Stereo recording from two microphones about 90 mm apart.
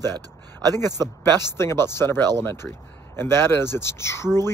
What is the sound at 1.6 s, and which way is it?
Speech, 30° left (ahead or behind).